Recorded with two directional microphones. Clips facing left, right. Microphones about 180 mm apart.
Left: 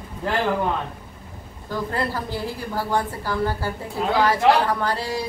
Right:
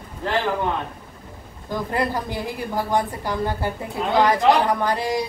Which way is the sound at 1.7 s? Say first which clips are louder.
Right 2 dB; 15° right (ahead or behind).